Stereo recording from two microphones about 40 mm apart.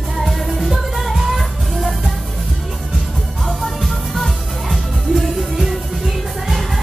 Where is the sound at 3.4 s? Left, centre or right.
Centre.